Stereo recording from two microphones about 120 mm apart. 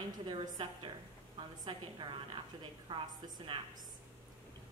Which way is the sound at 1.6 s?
40° right (ahead or behind).